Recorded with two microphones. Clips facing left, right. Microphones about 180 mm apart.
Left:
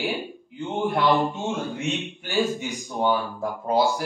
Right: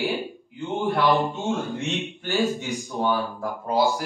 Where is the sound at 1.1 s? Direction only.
Centre (ahead or behind).